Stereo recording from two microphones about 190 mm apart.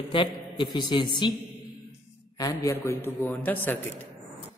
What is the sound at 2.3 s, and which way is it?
A man's voice, 15° left (ahead or behind).